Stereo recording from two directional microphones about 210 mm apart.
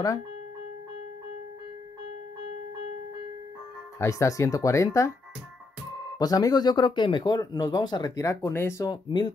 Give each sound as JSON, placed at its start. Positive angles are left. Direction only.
{"t": 4.0, "sound": "speech", "side_deg": 15}
{"t": 6.1, "sound": "speech", "side_deg": 15}